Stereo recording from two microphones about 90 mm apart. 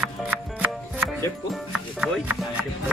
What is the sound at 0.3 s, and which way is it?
Music, 20° right (ahead or behind).